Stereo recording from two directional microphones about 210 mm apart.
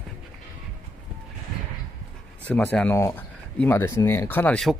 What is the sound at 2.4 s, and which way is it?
Speech, 5° left (ahead or behind).